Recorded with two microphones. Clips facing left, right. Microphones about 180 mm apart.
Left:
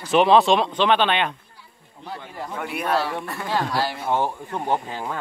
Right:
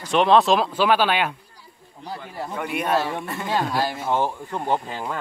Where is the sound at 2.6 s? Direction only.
Centre (ahead or behind).